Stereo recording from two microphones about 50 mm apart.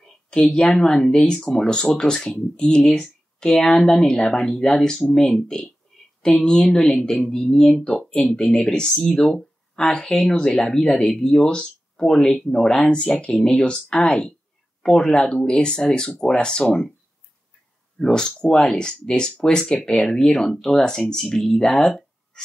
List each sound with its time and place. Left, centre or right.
0.0 s a sound: centre
0.7 s speech: centre
5.9 s a sound: centre
6.3 s speech: centre
8.5 s speech: centre
12.9 s speech: centre
18.0 s speech: centre